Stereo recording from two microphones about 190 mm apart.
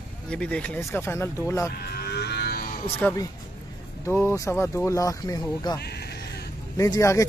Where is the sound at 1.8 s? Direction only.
55° left (ahead or behind).